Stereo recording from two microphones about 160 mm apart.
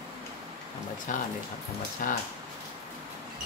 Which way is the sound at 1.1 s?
60° left (ahead or behind).